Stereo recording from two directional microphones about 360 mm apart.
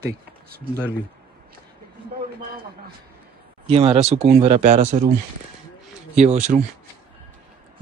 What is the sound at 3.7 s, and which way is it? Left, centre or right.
Speech, centre.